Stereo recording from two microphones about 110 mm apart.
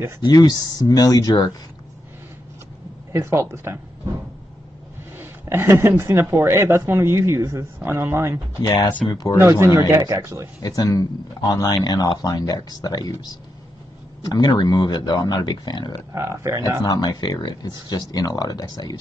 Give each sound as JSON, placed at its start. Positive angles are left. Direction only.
{"t": 0.2, "sound": "speech", "side_deg": 40}
{"t": 3.1, "sound": "speech", "side_deg": -25}
{"t": 5.2, "sound": "speech", "side_deg": -20}
{"t": 8.6, "sound": "speech", "side_deg": 35}
{"t": 9.4, "sound": "speech", "side_deg": -25}
{"t": 10.6, "sound": "speech", "side_deg": 35}
{"t": 14.2, "sound": "speech", "side_deg": 35}
{"t": 16.1, "sound": "speech", "side_deg": -25}
{"t": 16.6, "sound": "speech", "side_deg": 40}